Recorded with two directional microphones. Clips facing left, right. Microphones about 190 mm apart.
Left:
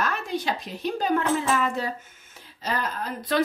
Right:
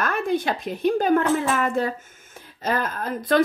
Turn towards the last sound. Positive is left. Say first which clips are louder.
# right 5 dB
turn(degrees=-50)  # may be behind; listen again after turning